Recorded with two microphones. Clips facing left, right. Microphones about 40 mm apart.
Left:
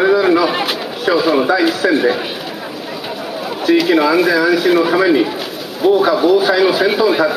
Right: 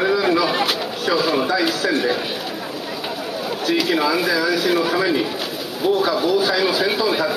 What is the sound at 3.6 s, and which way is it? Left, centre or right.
Speech, centre.